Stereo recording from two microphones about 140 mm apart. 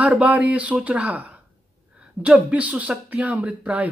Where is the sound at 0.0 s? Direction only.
10° right (ahead or behind).